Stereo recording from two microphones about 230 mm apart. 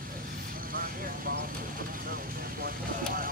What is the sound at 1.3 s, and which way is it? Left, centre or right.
Vehicle, right.